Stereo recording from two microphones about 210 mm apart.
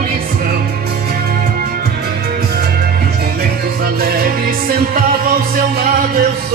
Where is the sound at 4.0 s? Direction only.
45° right (ahead or behind).